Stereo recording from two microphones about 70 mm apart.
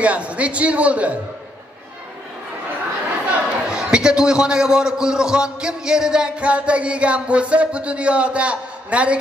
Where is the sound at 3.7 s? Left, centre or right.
Centre.